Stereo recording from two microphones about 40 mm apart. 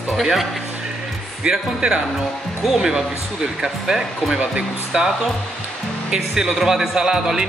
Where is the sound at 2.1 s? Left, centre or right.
Centre.